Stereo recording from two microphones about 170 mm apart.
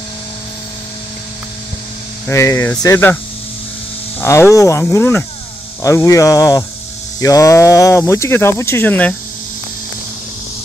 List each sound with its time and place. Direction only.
2.2 s speech: 15° left (ahead or behind)
4.2 s speech: 15° left (ahead or behind)